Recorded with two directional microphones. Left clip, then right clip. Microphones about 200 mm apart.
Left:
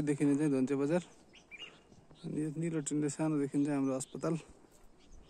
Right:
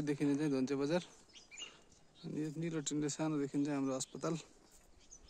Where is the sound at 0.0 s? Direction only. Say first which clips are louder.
Left 4 dB; centre (ahead or behind).